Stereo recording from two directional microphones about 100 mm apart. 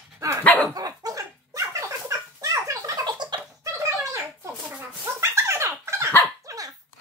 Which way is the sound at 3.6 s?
30° right (ahead or behind).